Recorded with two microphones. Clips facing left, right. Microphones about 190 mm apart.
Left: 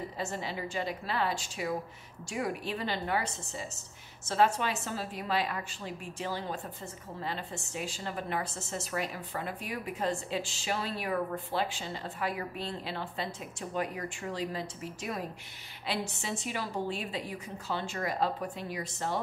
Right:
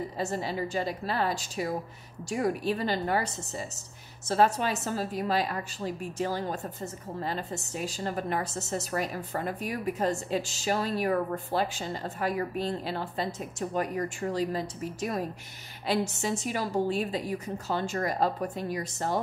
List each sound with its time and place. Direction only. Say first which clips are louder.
0.2 s a woman's voice: right 5 dB; 40° right (ahead or behind)